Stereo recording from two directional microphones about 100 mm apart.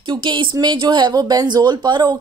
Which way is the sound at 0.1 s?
55° right (ahead or behind).